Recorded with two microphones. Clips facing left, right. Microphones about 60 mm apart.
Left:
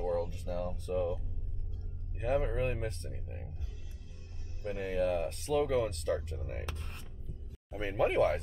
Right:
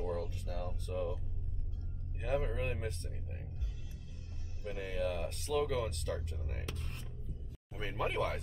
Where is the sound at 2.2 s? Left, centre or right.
Centre.